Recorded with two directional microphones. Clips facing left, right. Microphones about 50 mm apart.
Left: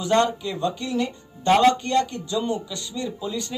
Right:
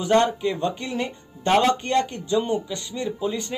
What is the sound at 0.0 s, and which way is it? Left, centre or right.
Speech, right.